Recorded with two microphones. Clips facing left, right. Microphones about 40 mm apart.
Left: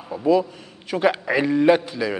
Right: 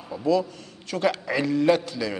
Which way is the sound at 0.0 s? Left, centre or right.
Centre.